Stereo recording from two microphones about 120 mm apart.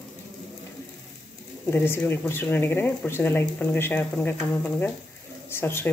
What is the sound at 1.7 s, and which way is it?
Speech, 20° left (ahead or behind).